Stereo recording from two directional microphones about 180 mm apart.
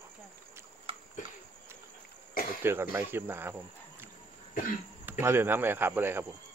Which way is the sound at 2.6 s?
15° right (ahead or behind).